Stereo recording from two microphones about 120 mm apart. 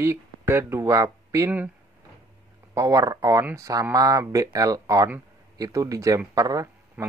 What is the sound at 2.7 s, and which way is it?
Speech, 30° right (ahead or behind).